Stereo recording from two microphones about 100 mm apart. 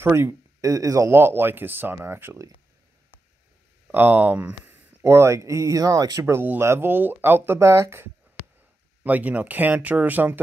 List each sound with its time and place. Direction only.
0.0 s speech: 25° right (ahead or behind)
3.9 s speech: 20° right (ahead or behind)
9.0 s speech: 15° right (ahead or behind)